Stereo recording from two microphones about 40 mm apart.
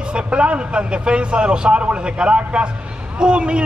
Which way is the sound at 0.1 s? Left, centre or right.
Right.